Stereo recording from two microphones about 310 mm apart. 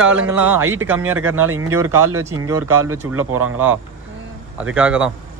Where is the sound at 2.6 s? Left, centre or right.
Right.